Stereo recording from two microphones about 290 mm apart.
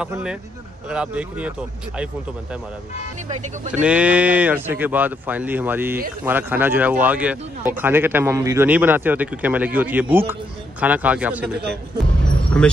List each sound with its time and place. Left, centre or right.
0.0 s speech: centre
3.3 s speech: right
3.8 s a man's voice: centre
12.6 s speech: centre